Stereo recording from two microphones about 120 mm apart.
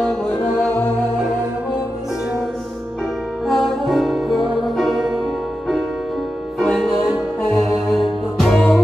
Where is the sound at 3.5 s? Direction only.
Centre (ahead or behind).